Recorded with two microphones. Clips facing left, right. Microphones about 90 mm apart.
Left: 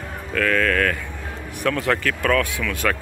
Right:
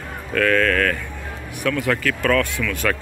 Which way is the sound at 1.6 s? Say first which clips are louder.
Even; 30° left (ahead or behind).